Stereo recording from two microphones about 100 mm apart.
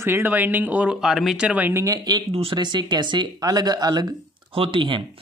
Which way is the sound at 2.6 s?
50° right (ahead or behind).